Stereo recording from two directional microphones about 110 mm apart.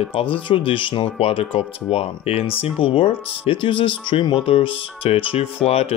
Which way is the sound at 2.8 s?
50° left (ahead or behind).